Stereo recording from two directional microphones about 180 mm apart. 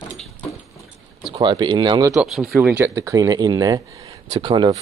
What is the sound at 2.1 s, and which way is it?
Speech, centre (ahead or behind).